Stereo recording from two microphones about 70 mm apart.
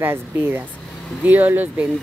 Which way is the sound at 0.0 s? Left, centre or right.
Right.